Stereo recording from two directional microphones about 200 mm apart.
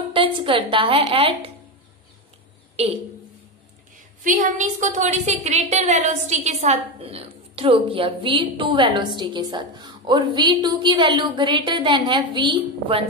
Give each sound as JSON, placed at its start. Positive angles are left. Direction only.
{"t": 0.1, "sound": "a woman's voice", "side_deg": -25}
{"t": 2.7, "sound": "speech", "side_deg": -30}
{"t": 4.2, "sound": "a woman's voice", "side_deg": -40}